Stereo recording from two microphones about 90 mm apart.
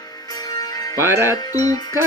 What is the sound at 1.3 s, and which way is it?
Music, 45° left (ahead or behind).